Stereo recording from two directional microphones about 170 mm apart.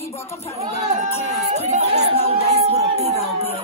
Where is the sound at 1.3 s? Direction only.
40° right (ahead or behind).